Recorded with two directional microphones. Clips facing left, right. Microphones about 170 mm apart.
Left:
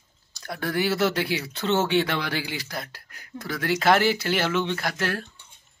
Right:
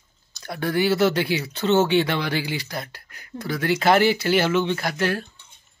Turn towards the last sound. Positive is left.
turn(degrees=0)  # may be behind; listen again after turning